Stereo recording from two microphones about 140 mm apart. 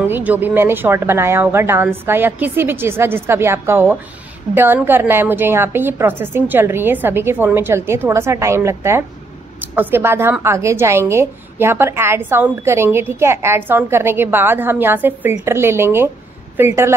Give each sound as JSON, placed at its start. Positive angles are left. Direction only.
{"t": 0.0, "sound": "a woman's voice", "side_deg": -15}